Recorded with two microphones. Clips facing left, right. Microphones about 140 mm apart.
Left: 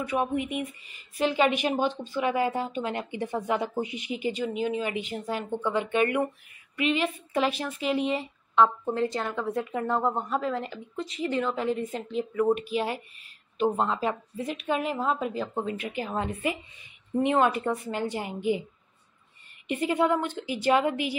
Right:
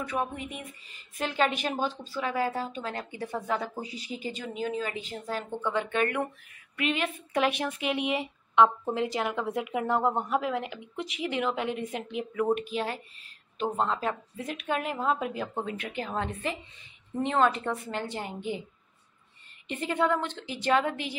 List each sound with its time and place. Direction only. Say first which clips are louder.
0.1 s a woman's voice: left 7 dB; 10° left (ahead or behind)
6.8 s a woman's voice: left 3 dB; centre (ahead or behind)
11.1 s speech: left 3 dB; 90° right
11.4 s a woman's voice: left 2 dB; 5° right (ahead or behind)
12.7 s a woman's voice: left 3 dB; 10° left (ahead or behind)
19.7 s a woman's voice: left 3 dB; 10° left (ahead or behind)